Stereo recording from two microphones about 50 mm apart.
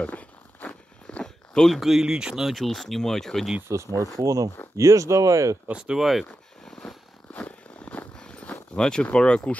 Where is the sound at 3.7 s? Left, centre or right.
Right.